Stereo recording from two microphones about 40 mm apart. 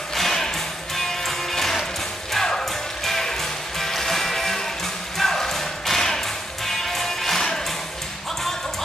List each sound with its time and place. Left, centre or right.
0.1 s music: centre